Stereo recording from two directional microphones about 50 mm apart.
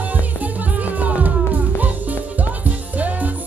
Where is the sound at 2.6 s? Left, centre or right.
Right.